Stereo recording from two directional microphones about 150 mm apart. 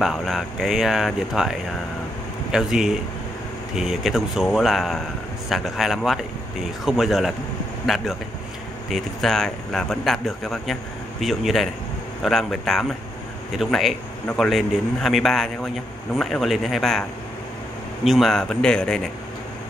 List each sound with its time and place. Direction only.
0.0 s speech: centre (ahead or behind)
18.0 s speech: centre (ahead or behind)